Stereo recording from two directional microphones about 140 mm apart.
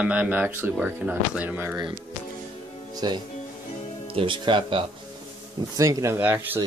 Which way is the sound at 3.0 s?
30° right (ahead or behind).